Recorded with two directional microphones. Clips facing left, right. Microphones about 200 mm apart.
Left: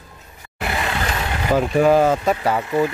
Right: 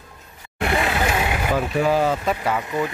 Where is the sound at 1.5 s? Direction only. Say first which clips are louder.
Left 6 dB; 50° left (ahead or behind).